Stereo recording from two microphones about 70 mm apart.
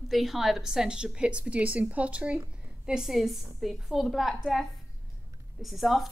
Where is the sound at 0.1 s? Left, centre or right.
Centre.